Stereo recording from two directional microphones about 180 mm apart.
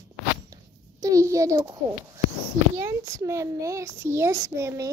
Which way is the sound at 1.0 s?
20° right (ahead or behind).